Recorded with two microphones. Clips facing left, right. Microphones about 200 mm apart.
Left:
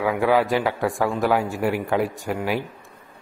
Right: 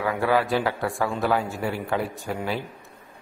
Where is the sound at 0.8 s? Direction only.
Centre (ahead or behind).